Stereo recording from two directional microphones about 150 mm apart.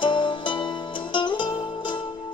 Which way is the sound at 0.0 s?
35° left (ahead or behind).